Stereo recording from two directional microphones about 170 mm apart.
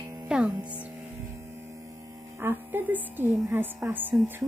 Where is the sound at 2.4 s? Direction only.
15° right (ahead or behind).